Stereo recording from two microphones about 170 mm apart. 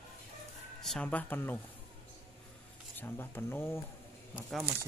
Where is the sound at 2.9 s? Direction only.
10° left (ahead or behind).